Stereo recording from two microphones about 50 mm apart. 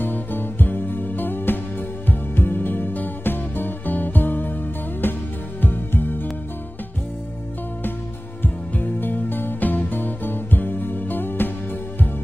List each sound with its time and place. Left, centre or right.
0.0 s music: left
8.4 s music: left